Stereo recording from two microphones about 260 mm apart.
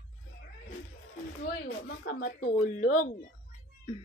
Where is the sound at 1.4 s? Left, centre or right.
Left.